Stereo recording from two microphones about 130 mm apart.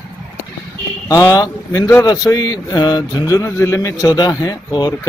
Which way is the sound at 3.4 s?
20° left (ahead or behind).